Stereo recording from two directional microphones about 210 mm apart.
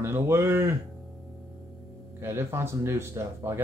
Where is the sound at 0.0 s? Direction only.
10° right (ahead or behind).